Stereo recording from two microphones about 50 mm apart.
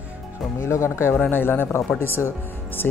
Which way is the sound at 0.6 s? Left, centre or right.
Left.